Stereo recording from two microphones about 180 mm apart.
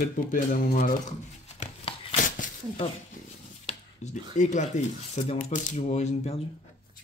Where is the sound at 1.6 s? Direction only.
30° left (ahead or behind).